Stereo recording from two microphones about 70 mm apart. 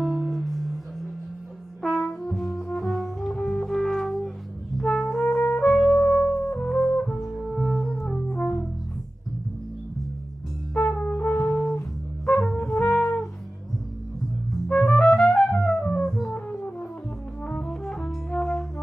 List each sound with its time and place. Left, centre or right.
0.0 s music: centre
1.8 s brass instrument: centre
2.2 s music: centre
5.9 s music: centre
7.2 s music: centre
8.3 s music: left
10.7 s brass instrument: left
12.4 s brass instrument: centre
12.8 s music: centre
14.7 s music: centre
16.3 s music: centre
17.5 s brass instrument: centre